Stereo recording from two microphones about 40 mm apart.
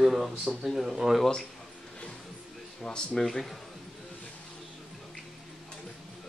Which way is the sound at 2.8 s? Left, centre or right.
Centre.